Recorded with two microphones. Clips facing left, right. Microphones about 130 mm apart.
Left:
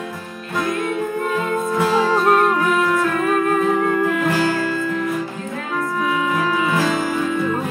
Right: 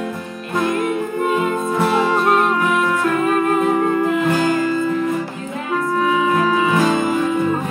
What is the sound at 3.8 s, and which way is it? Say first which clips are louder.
Music: right 2 dB; 20° right (ahead or behind).